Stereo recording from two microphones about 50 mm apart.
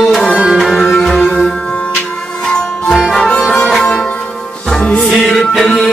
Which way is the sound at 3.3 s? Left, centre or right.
Centre.